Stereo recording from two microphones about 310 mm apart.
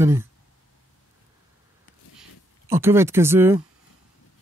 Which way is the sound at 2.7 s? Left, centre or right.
Centre.